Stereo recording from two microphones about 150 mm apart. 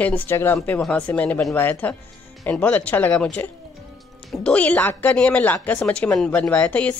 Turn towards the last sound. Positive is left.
turn(degrees=10)  # may be behind; listen again after turning